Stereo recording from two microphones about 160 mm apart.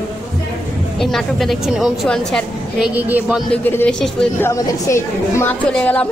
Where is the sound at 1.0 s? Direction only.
Centre (ahead or behind).